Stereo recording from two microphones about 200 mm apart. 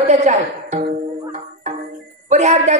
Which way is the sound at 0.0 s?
35° right (ahead or behind).